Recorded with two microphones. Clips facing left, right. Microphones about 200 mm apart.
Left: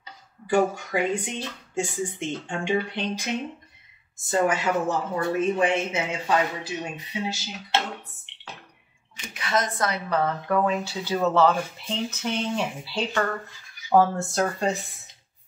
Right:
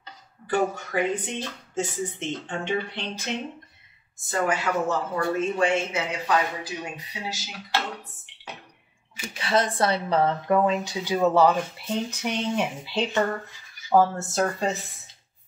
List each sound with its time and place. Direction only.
0.5 s speech: 10° left (ahead or behind)
4.3 s a sound: 20° left (ahead or behind)
9.3 s speech: 30° right (ahead or behind)
13.9 s speech: centre (ahead or behind)